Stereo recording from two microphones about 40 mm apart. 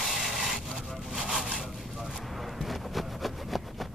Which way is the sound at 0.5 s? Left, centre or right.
Centre.